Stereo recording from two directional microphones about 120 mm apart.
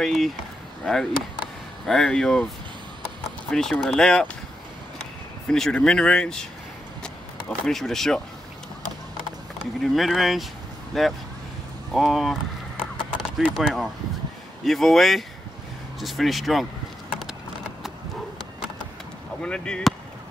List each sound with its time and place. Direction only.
0.0 s speech: centre (ahead or behind)
3.4 s speech: 5° left (ahead or behind)
5.5 s speech: 5° left (ahead or behind)
7.0 s vehicle: 5° left (ahead or behind)
9.8 s speech: centre (ahead or behind)
12.9 s a sound: 5° left (ahead or behind)
14.6 s speech: centre (ahead or behind)
19.4 s speech: 5° left (ahead or behind)